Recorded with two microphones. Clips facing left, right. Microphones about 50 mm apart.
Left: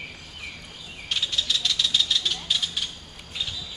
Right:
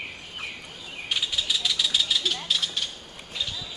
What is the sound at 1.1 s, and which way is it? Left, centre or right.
Vehicle, centre.